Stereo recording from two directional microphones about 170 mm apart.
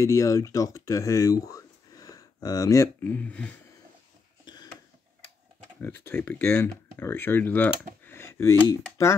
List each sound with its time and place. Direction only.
0.0 s speech: 20° left (ahead or behind)
5.8 s speech: 10° left (ahead or behind)
8.0 s a sound: 15° left (ahead or behind)